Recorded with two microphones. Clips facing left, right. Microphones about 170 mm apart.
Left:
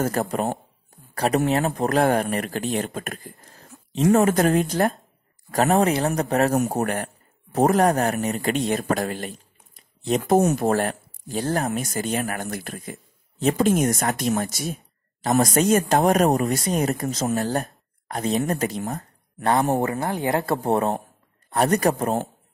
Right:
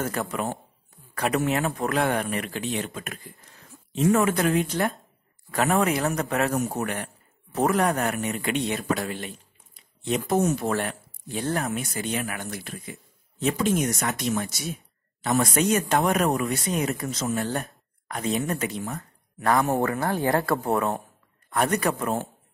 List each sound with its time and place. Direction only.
0.0 s speech: 40° left (ahead or behind)
3.9 s a man's voice: 35° left (ahead or behind)
19.8 s speech: 20° left (ahead or behind); by 22.2 s 40° left (ahead or behind)